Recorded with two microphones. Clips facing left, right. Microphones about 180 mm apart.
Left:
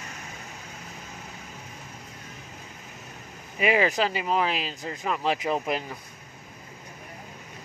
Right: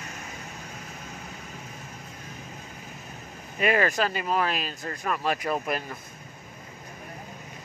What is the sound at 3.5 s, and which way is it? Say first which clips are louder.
Speech: left 1 dB; 15° left (ahead or behind).